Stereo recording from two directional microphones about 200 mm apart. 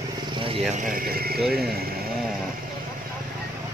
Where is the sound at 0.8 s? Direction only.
45° right (ahead or behind).